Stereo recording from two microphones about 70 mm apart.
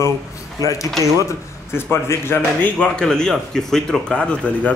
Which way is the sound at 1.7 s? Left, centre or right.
Left.